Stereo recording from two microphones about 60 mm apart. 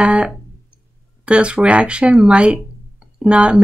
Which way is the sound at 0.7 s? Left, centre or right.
Centre.